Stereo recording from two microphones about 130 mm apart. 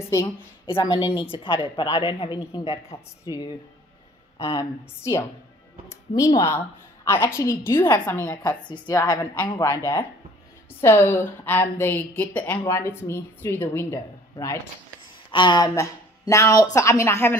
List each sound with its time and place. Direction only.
0.7 s a woman's voice: 40° left (ahead or behind)
3.3 s speech: 30° left (ahead or behind)
4.6 s a woman's voice: 25° left (ahead or behind)
8.8 s a woman's voice: 30° left (ahead or behind); by 12.6 s 10° left (ahead or behind)
12.6 s a woman's voice: 20° left (ahead or behind)
15.3 s speech: 35° left (ahead or behind)
15.7 s a woman's voice: 25° left (ahead or behind)